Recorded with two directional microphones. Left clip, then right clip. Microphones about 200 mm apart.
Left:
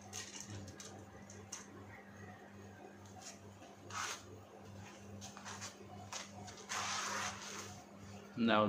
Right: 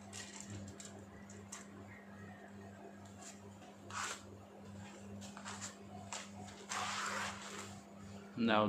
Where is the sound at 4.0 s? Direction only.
25° right (ahead or behind).